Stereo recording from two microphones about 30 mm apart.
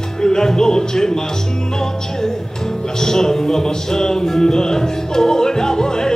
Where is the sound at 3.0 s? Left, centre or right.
Centre.